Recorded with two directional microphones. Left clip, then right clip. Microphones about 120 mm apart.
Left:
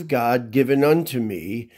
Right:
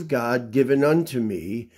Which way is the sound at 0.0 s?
40° left (ahead or behind).